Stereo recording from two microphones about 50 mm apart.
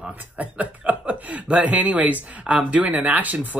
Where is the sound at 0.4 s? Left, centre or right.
Right.